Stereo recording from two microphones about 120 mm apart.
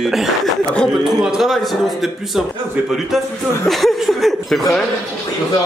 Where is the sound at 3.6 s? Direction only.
Centre (ahead or behind).